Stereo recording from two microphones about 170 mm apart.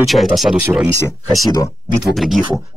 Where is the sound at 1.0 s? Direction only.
20° left (ahead or behind).